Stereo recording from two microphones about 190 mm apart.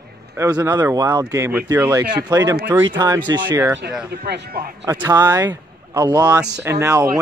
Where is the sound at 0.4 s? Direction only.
10° right (ahead or behind).